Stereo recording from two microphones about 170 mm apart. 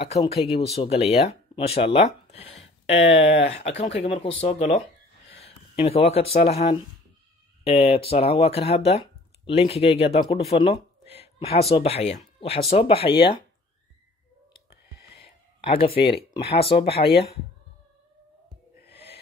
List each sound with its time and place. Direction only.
0.2 s speech: 35° left (ahead or behind)
3.0 s speech: 90° left
4.0 s speech: 35° left (ahead or behind)
5.3 s a sound: 35° left (ahead or behind)
7.6 s speech: 35° left (ahead or behind)
15.1 s a sound: 35° left (ahead or behind)
15.9 s speech: 70° left (ahead or behind)
16.2 s speech: 35° left (ahead or behind)
16.8 s speech: 70° left (ahead or behind)